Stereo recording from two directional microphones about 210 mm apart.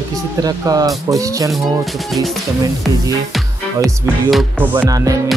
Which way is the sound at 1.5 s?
Centre (ahead or behind).